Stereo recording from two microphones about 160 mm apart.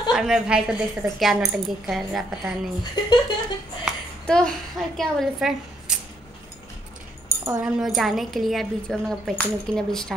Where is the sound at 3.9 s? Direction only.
5° left (ahead or behind).